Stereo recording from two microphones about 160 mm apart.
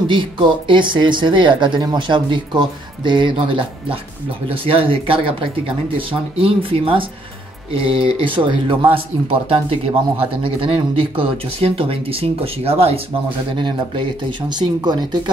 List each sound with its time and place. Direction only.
0.1 s speech: 30° right (ahead or behind)